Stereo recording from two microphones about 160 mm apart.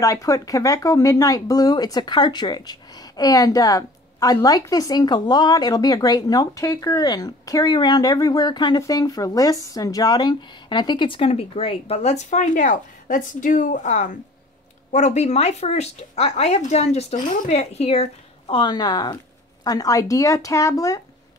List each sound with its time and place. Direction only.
0.0 s speech: 20° left (ahead or behind); by 18.0 s 40° left (ahead or behind)
18.5 s speech: 30° left (ahead or behind)